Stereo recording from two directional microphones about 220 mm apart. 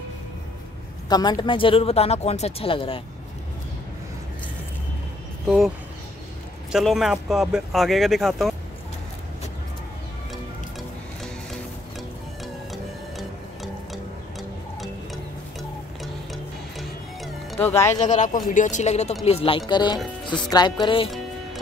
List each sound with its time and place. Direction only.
1.0 s speech: 20° left (ahead or behind)
6.7 s speech: centre (ahead or behind)
16.7 s music: 5° left (ahead or behind)
18.0 s speech: 35° left (ahead or behind); by 20.0 s 20° left (ahead or behind)
20.4 s music: 20° left (ahead or behind)
20.8 s speech: 25° left (ahead or behind)